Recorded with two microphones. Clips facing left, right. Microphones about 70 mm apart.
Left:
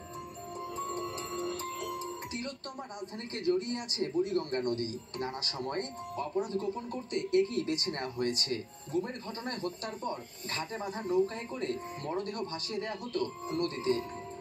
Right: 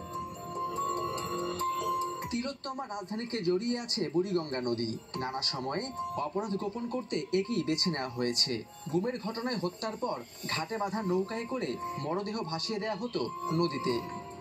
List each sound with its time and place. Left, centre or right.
0.7 s music: right
3.3 s speech: right